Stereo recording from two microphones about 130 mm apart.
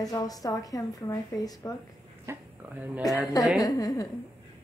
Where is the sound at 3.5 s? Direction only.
30° left (ahead or behind).